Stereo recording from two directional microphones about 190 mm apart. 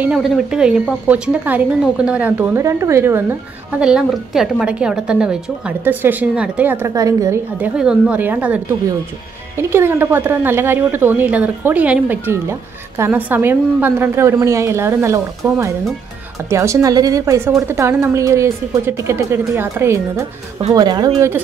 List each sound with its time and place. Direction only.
0.0 s a woman's voice: 5° right (ahead or behind)
7.7 s a woman's voice: 5° right (ahead or behind)
9.6 s a woman's voice: 15° right (ahead or behind)